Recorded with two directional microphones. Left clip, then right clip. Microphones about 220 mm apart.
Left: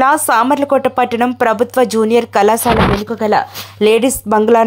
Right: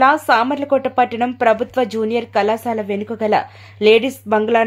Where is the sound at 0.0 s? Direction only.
20° left (ahead or behind).